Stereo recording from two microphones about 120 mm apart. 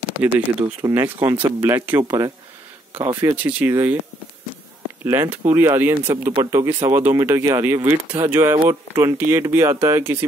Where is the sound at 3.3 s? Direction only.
15° right (ahead or behind).